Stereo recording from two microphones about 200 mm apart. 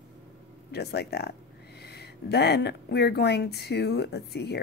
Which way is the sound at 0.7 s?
55° left (ahead or behind).